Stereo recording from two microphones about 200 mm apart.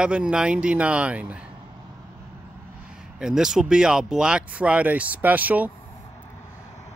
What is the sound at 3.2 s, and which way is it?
Speech, 5° right (ahead or behind).